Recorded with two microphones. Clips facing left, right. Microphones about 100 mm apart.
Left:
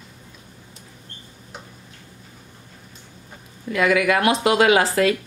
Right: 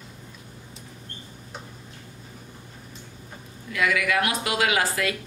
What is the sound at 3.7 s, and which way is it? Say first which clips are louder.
Speech: left 5 dB; 40° left (ahead or behind).